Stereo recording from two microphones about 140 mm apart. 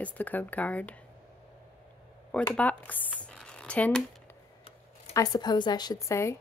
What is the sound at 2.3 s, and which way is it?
Speech, 10° left (ahead or behind).